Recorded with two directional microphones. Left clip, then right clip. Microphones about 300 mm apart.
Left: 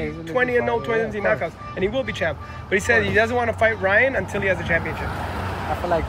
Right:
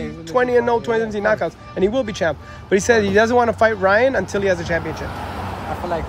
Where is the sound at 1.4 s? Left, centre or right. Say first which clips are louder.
Right 5 dB; right.